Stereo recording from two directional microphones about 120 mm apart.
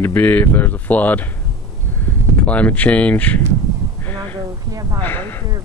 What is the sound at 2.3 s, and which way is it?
Speech, 10° left (ahead or behind).